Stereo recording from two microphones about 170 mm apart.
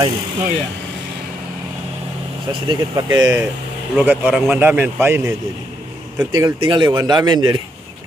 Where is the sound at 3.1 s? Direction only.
15° right (ahead or behind).